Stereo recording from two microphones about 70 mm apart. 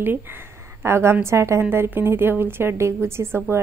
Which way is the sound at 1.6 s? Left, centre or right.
Right.